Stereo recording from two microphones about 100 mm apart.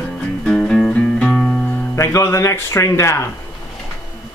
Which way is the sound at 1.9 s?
30° left (ahead or behind).